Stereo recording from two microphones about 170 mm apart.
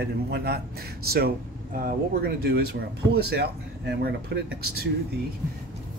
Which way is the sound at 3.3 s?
80° right.